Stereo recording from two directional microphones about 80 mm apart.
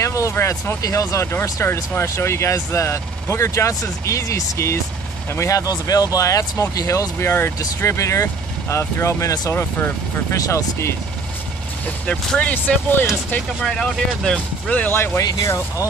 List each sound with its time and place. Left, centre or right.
0.0 s vehicle: left
0.8 s speech: left
10.3 s speech: left
12.1 s speech: centre
13.6 s speech: centre
14.7 s speech: centre
15.2 s speech: left